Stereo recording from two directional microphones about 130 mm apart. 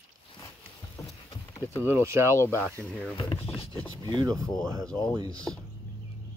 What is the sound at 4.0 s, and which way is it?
Speech, 25° right (ahead or behind).